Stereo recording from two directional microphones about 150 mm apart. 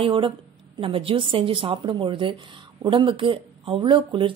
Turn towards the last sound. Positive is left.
turn(degrees=-35)  # may be behind; listen again after turning